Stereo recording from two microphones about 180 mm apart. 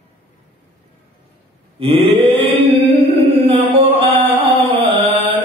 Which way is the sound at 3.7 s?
30° right (ahead or behind).